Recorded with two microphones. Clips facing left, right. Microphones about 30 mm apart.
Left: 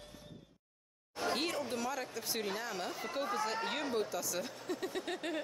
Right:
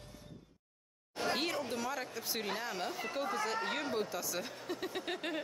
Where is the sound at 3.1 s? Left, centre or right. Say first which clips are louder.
Left 1 dB; centre.